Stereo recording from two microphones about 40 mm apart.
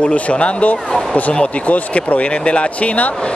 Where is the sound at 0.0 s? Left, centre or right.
Left.